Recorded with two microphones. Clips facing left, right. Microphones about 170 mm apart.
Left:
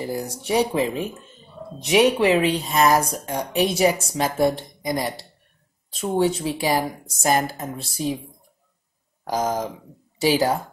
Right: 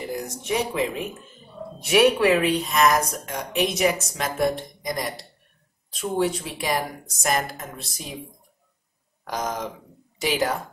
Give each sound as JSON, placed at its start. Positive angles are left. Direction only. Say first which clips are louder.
{"t": 0.1, "sound": "speech", "louder": "left 3 dB", "side_deg": 35}
{"t": 1.8, "sound": "a woman's voice", "louder": "left 1 dB", "side_deg": 20}
{"t": 9.2, "sound": "speech", "louder": "left 5 dB", "side_deg": 30}